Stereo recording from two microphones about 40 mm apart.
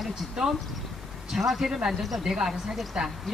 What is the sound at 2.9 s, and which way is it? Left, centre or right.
Speech, right.